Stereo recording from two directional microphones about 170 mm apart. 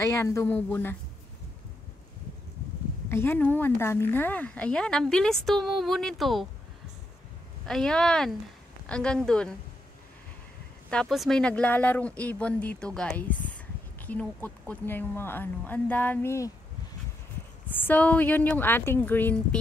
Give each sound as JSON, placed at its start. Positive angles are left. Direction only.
{"t": 0.0, "sound": "speech", "side_deg": 15}
{"t": 3.1, "sound": "a woman's voice", "side_deg": 15}
{"t": 7.6, "sound": "a woman's voice", "side_deg": 5}
{"t": 10.9, "sound": "speech", "side_deg": 0}
{"t": 17.7, "sound": "speech", "side_deg": 10}